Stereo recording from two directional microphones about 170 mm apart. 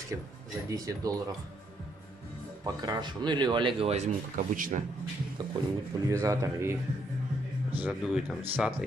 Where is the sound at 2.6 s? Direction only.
25° right (ahead or behind).